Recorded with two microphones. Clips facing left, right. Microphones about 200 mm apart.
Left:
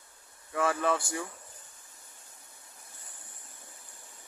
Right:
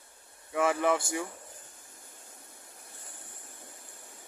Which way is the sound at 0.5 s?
15° right (ahead or behind).